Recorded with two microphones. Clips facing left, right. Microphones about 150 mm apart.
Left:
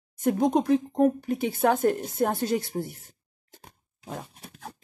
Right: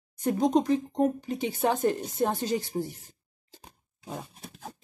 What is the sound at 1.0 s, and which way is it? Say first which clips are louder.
A woman's voice: left 4 dB; 55° left (ahead or behind).